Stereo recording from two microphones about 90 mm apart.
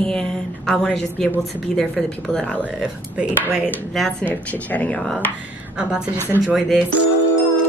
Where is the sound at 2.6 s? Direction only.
15° right (ahead or behind).